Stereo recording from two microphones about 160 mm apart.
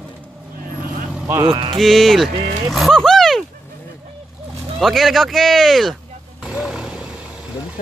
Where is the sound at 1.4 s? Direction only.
30° right (ahead or behind).